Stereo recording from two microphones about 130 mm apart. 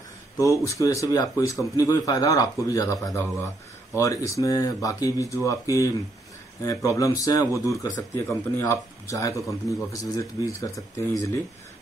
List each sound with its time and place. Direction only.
0.4 s a man's voice: 25° left (ahead or behind)